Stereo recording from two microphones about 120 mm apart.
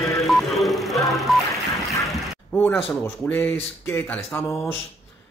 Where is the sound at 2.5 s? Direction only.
15° left (ahead or behind).